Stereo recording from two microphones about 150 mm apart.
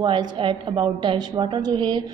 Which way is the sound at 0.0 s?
30° right (ahead or behind).